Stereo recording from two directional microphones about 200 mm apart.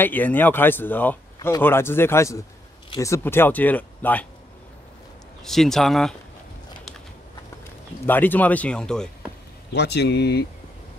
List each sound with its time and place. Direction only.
0.0 s speech: 10° left (ahead or behind)
5.4 s speech: centre (ahead or behind)
8.1 s speech: 10° left (ahead or behind)
9.7 s a man's voice: 55° left (ahead or behind)